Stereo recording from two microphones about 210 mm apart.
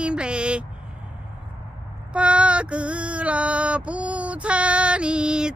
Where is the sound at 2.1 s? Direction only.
5° right (ahead or behind).